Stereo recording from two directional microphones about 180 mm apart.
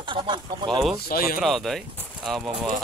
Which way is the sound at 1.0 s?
55° left (ahead or behind).